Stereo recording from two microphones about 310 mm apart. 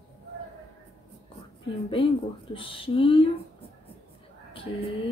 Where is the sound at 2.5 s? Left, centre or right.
Centre.